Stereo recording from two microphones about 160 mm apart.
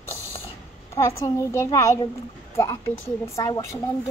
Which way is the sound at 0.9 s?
20° left (ahead or behind).